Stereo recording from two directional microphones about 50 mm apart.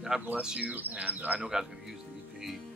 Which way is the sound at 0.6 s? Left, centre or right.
Right.